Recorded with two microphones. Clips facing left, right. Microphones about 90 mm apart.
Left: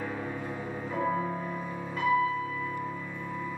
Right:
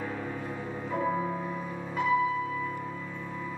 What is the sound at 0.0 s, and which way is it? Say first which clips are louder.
Music: even; 5° left (ahead or behind).